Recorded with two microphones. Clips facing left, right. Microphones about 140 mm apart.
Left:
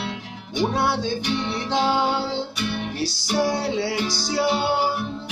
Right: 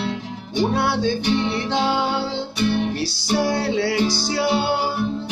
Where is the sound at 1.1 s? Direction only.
65° right (ahead or behind).